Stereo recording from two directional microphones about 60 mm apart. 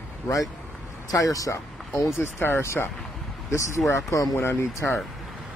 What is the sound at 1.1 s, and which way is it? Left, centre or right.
Speech, left.